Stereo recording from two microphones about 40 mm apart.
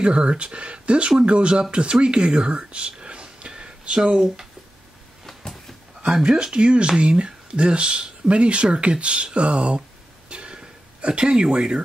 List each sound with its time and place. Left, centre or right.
0.0 s speech: right
6.2 s speech: right
10.3 s a sound: right